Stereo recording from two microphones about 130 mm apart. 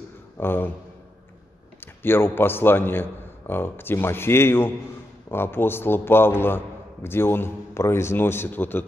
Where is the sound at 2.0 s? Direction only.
15° left (ahead or behind).